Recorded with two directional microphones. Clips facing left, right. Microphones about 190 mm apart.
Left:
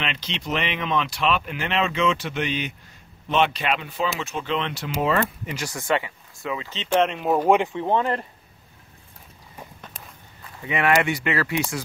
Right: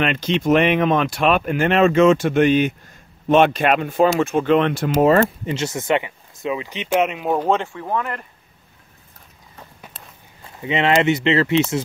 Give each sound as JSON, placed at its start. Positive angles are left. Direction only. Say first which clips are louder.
{"t": 0.0, "sound": "speech", "louder": "right 11 dB", "side_deg": -50}
{"t": 5.4, "sound": "speech", "louder": "right 7 dB", "side_deg": -25}
{"t": 7.3, "sound": "speech", "louder": "left 3 dB", "side_deg": 15}
{"t": 10.4, "sound": "speech", "louder": "right 4 dB", "side_deg": -25}